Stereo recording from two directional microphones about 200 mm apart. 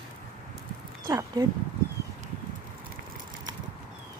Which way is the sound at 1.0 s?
20° right (ahead or behind).